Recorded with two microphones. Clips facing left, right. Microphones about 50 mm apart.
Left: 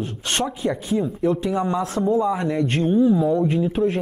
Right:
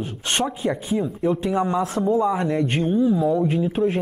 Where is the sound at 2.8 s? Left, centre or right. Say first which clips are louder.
Left 3 dB; centre.